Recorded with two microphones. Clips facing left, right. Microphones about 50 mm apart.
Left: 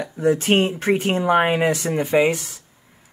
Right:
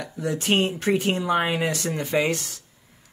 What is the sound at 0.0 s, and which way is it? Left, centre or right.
Speech, left.